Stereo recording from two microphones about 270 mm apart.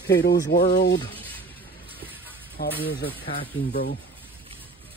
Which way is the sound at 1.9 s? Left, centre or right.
Centre.